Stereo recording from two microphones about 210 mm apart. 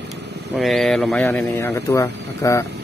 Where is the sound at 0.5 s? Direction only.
Centre (ahead or behind).